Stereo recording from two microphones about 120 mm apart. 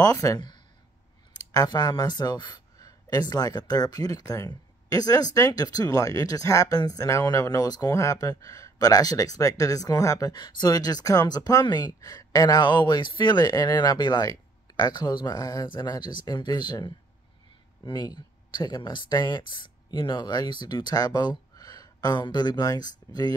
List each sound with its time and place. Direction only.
0.0 s speech: 30° left (ahead or behind)
1.5 s speech: 35° left (ahead or behind)